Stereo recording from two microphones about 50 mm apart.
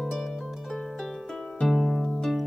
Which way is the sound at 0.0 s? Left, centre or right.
Centre.